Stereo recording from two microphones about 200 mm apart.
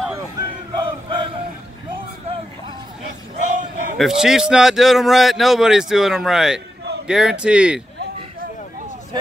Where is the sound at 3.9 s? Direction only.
Centre (ahead or behind).